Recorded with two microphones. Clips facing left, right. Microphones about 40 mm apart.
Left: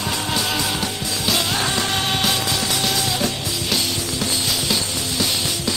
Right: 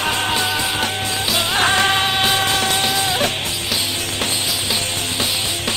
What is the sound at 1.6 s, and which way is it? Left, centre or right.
Music, right.